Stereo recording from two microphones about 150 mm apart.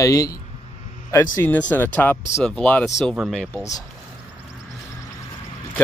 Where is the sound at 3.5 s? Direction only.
20° left (ahead or behind).